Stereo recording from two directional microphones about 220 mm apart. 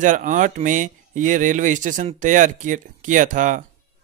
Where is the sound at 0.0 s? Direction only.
35° right (ahead or behind).